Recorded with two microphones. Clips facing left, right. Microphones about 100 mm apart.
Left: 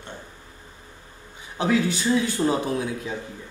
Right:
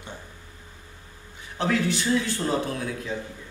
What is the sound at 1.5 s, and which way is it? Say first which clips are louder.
Speech: left 2 dB; 15° left (ahead or behind).